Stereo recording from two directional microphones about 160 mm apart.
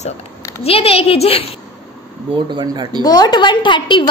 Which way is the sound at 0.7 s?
35° left (ahead or behind).